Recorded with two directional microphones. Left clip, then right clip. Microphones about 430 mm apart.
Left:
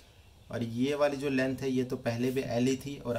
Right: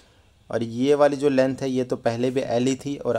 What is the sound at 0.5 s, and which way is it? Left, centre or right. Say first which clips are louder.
A man's voice: right 11 dB; centre.